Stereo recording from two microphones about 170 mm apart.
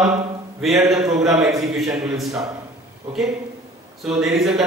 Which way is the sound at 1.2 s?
20° right (ahead or behind).